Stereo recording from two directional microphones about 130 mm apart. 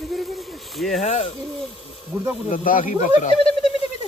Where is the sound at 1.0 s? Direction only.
55° left (ahead or behind).